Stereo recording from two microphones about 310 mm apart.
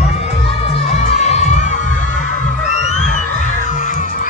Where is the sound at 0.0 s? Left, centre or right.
Centre.